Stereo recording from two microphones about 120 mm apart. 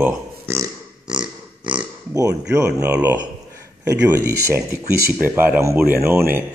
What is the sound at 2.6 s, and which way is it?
Speech, 20° right (ahead or behind).